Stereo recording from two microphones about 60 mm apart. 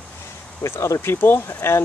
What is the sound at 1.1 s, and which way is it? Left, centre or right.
Speech, left.